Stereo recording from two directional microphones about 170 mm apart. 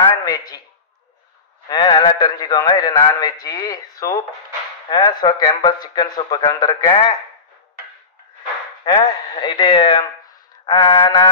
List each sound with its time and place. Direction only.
0.2 s a man's voice: 20° left (ahead or behind)
1.7 s speech: 25° left (ahead or behind)
8.8 s speech: 25° left (ahead or behind)